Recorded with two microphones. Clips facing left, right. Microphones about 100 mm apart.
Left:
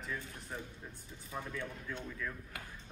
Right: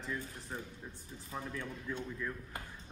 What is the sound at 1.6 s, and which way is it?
Speech, 15° right (ahead or behind).